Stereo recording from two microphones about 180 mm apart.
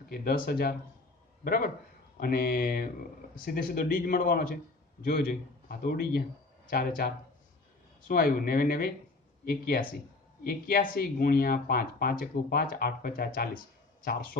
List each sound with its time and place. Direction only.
0.1 s speech: 55° left (ahead or behind)
5.7 s speech: 55° left (ahead or behind)